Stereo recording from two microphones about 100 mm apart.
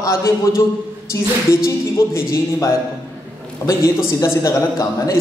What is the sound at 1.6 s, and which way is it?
Speech, 30° left (ahead or behind).